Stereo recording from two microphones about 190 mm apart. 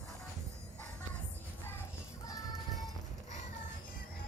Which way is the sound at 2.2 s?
20° left (ahead or behind).